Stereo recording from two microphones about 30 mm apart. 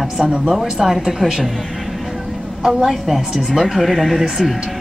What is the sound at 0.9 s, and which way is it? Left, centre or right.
Speech, centre.